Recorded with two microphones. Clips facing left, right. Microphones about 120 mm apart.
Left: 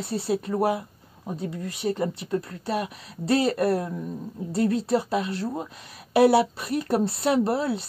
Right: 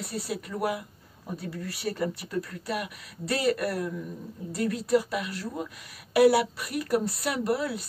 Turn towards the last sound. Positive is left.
turn(degrees=25)  # may be behind; listen again after turning